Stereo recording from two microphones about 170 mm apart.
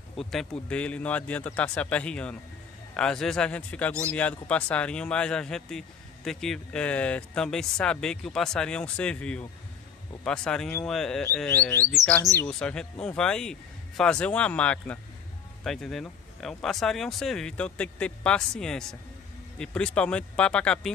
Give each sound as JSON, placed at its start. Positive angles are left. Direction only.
{"t": 0.2, "sound": "a man's voice", "side_deg": 0}